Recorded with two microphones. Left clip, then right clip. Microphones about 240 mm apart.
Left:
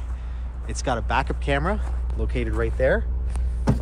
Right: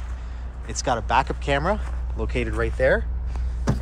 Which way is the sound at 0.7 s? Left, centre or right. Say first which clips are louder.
Right 2 dB; centre.